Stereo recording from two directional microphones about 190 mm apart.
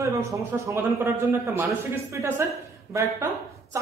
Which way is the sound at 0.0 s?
15° right (ahead or behind).